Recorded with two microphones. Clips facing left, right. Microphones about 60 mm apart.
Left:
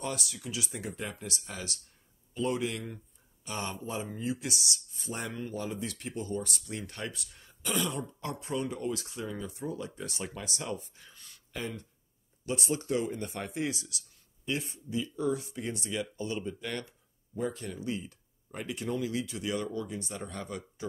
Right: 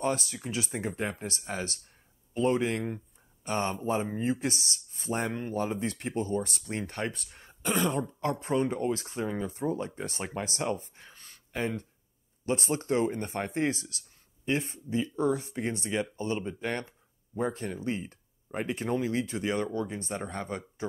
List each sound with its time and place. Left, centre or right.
0.0 s speech: right